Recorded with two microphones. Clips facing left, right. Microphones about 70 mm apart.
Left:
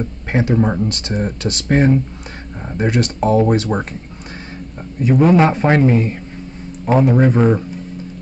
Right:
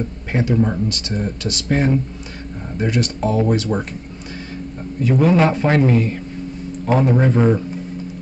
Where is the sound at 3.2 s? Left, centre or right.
Left.